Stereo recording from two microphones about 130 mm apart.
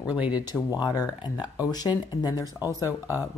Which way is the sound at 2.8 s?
15° right (ahead or behind).